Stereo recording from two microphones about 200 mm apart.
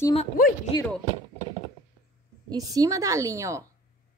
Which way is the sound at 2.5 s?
20° right (ahead or behind).